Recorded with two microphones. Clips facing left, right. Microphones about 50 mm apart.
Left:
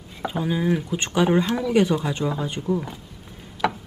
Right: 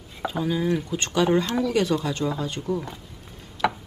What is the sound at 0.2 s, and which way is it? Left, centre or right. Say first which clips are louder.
Speech: left 1 dB; centre.